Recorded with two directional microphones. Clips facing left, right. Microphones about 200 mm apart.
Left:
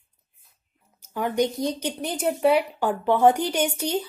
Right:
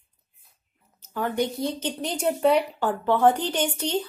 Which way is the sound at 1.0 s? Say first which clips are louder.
Left 2 dB; 15° left (ahead or behind).